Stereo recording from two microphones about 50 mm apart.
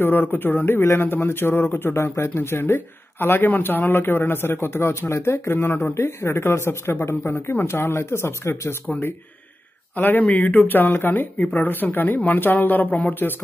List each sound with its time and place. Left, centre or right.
0.0 s speech: left
9.9 s speech: left